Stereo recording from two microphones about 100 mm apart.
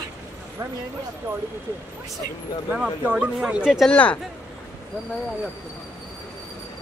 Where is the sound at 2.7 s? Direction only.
15° right (ahead or behind).